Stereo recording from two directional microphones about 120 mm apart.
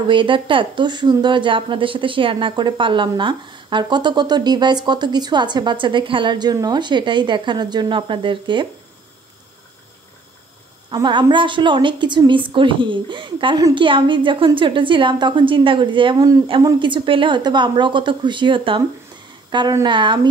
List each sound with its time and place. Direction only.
0.1 s a woman's voice: 45° right (ahead or behind)
10.9 s a woman's voice: 40° right (ahead or behind)